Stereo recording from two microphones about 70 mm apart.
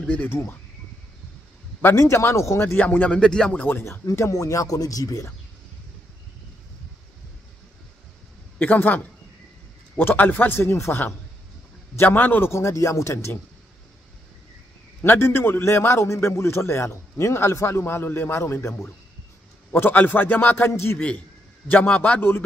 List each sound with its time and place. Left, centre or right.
0.1 s a man's voice: left
1.8 s a man's voice: left
2.7 s a man's voice: left
3.2 s speech: centre
3.6 s a man's voice: left
4.0 s speech: left
8.5 s a man's voice: left
12.0 s a man's voice: left
15.0 s a man's voice: left
19.7 s a man's voice: left
21.6 s a man's voice: left